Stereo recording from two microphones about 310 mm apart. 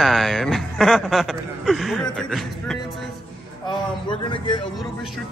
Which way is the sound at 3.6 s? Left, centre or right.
Centre.